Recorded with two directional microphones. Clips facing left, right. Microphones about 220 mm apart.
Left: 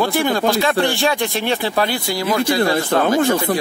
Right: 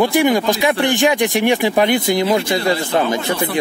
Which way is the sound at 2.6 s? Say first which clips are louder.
Left 1 dB; 50° left (ahead or behind).